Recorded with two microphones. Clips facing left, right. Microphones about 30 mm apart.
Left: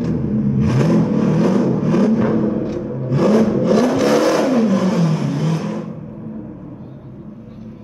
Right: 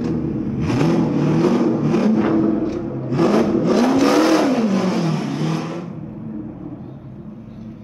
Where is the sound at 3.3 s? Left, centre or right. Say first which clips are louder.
Left 3 dB; centre.